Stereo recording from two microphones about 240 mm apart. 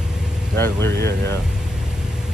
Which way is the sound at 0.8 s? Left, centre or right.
Right.